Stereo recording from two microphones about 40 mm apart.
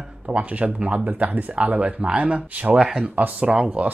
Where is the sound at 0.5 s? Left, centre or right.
Right.